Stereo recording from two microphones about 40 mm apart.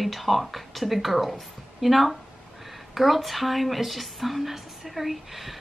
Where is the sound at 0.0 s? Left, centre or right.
Centre.